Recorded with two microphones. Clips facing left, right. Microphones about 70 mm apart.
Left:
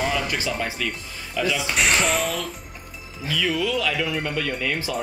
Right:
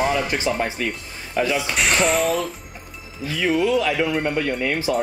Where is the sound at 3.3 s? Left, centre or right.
Right.